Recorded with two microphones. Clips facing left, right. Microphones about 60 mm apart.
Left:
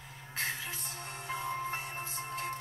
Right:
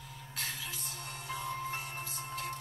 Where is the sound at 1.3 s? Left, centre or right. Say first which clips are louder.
Left 2 dB; left.